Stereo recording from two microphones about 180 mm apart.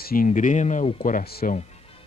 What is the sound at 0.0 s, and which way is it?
Speech, 50° left (ahead or behind).